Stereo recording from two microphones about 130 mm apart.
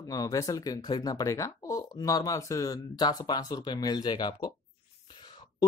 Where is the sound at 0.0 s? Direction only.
25° left (ahead or behind).